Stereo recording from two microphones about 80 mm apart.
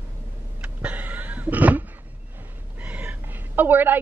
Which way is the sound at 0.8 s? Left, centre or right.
Centre.